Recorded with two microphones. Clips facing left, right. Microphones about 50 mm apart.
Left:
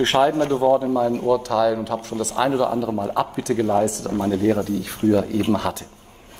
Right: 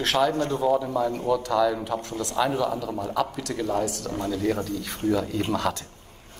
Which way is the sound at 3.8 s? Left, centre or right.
Left.